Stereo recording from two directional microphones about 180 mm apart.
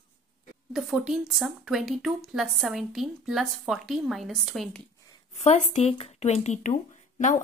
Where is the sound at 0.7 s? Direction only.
Centre (ahead or behind).